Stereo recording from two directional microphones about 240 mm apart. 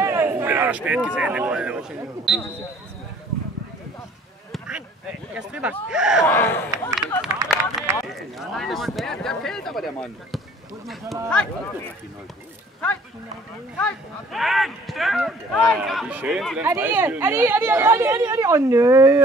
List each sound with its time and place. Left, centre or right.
0.0 s speech: centre
4.5 s a sound: centre
5.3 s speech: centre
6.2 s speech: centre
7.4 s run: centre
8.1 s speech: centre
13.8 s speech: centre